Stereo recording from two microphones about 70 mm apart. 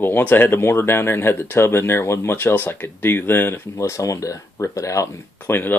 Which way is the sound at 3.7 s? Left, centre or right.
Left.